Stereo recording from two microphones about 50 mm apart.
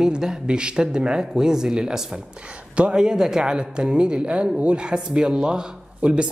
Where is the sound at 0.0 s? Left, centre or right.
Centre.